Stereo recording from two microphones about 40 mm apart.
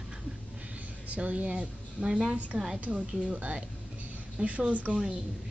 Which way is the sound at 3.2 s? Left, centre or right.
Right.